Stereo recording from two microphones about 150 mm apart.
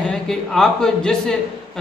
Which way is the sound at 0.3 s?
5° left (ahead or behind).